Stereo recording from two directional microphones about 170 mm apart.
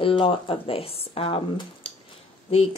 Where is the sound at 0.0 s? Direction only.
30° left (ahead or behind).